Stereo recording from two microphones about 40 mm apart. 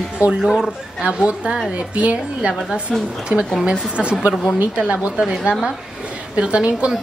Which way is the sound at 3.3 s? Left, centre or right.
Right.